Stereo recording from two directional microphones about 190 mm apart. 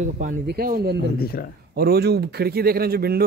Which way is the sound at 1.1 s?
55° left (ahead or behind).